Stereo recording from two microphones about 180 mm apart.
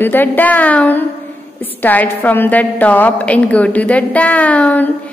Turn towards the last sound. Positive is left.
turn(degrees=10)  # may be behind; listen again after turning